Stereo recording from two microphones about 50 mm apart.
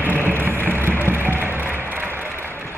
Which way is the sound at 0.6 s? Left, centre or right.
Right.